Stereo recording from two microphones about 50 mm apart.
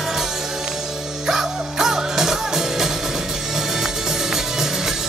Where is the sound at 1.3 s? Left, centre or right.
Centre.